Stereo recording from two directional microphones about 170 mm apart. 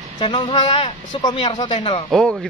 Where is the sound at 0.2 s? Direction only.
30° left (ahead or behind).